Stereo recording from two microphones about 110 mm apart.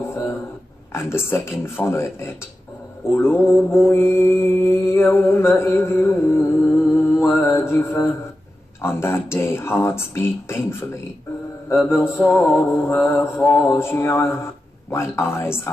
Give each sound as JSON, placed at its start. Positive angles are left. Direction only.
{"t": 0.9, "sound": "mantra", "side_deg": 20}
{"t": 11.8, "sound": "mantra", "side_deg": 20}